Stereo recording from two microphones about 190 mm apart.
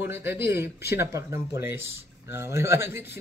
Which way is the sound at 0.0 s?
10° right (ahead or behind).